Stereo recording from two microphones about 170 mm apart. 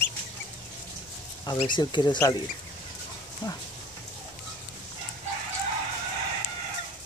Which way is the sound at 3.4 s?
25° left (ahead or behind).